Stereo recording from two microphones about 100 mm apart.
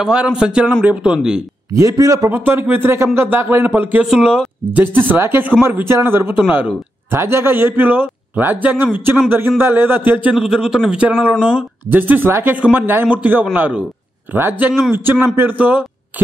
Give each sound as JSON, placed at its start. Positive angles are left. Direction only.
{"t": 0.0, "sound": "speech", "side_deg": -10}
{"t": 1.7, "sound": "a man's voice", "side_deg": -35}
{"t": 2.3, "sound": "a man's voice", "side_deg": -25}
{"t": 4.0, "sound": "speech", "side_deg": -5}
{"t": 4.9, "sound": "a man's voice", "side_deg": -20}
{"t": 10.3, "sound": "a man's voice", "side_deg": -5}